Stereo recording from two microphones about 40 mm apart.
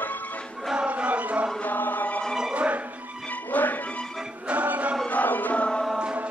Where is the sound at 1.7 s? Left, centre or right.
Left.